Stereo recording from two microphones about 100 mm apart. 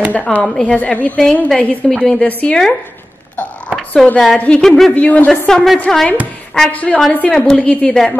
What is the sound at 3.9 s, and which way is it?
A woman's voice, 5° left (ahead or behind).